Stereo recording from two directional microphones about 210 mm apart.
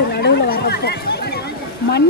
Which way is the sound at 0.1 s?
50° left (ahead or behind).